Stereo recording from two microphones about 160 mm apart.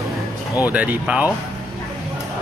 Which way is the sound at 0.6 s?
10° right (ahead or behind).